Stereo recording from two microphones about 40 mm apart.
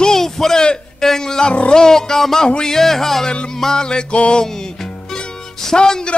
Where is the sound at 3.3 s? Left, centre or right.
Left.